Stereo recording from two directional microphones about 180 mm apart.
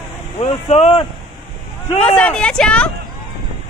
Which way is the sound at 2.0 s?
5° left (ahead or behind).